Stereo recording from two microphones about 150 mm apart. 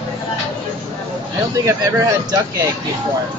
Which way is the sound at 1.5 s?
20° right (ahead or behind).